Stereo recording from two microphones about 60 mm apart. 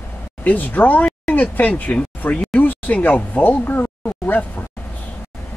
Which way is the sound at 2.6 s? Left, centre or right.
Left.